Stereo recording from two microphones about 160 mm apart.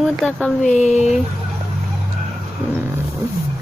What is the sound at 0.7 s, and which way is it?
Speech, 45° left (ahead or behind).